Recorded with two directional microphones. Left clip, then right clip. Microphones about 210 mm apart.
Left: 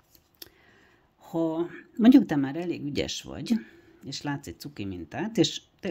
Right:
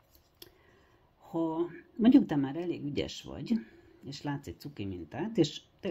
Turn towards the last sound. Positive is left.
turn(degrees=20)  # may be behind; listen again after turning